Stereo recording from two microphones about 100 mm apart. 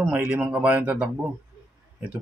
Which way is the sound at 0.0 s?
20° right (ahead or behind).